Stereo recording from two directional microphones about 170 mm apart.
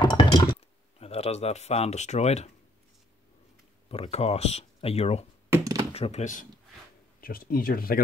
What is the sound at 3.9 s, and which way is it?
Speech, 35° left (ahead or behind).